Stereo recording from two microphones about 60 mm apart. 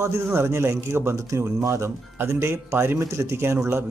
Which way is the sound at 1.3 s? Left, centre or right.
Right.